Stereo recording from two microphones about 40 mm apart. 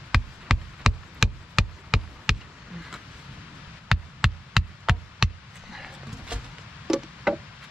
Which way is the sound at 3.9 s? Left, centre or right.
Centre.